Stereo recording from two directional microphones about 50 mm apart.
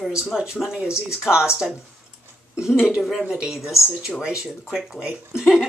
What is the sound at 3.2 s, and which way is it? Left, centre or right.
Speech, centre.